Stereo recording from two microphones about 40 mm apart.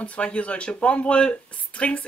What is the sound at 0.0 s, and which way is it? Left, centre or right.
Speech, left.